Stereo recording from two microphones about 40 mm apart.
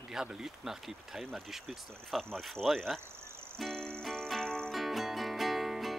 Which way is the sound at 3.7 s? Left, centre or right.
Centre.